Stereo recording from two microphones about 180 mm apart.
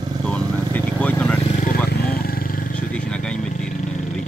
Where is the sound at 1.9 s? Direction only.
60° left (ahead or behind).